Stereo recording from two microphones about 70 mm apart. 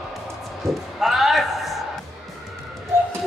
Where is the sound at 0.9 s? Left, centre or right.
Centre.